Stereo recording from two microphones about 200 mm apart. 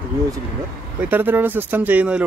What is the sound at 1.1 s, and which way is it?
Speech, 10° right (ahead or behind).